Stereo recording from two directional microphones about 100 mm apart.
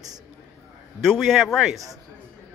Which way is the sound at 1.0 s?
5° left (ahead or behind).